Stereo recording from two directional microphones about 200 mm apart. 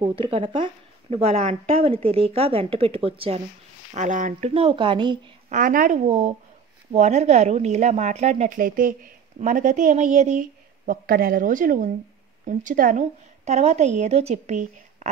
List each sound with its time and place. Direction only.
0.0 s speech: 25° right (ahead or behind)
5.5 s speech: 45° right (ahead or behind)